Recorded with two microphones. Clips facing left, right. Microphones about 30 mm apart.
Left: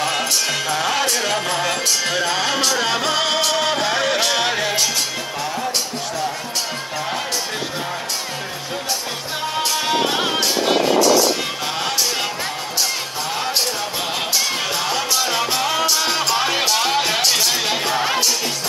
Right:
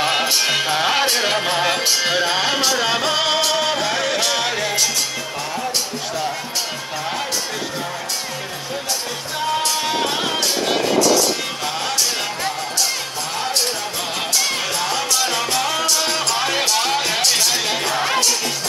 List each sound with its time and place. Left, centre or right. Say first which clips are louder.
0.0 s music: right 2 dB; right; by 4.8 s centre
9.6 s music: left 5 dB; centre
14.8 s music: even; centre